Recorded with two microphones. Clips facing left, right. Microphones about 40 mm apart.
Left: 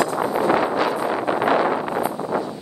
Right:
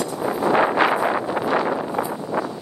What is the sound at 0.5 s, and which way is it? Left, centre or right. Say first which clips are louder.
Wind noise: right 3 dB; right.